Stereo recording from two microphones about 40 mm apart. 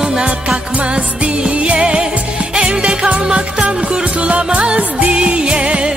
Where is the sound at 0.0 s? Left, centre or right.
Centre.